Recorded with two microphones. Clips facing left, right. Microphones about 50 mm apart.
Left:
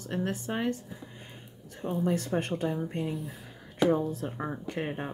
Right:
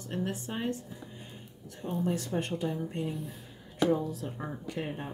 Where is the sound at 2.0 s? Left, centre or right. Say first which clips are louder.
Left 3 dB; left.